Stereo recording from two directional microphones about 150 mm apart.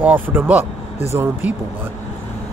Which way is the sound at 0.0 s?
10° right (ahead or behind).